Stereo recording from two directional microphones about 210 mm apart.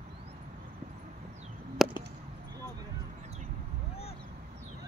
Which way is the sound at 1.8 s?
Centre (ahead or behind).